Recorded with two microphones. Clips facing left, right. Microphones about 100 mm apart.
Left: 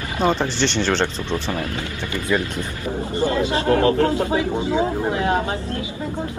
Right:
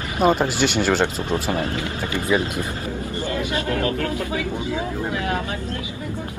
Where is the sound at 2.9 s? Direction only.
30° left (ahead or behind).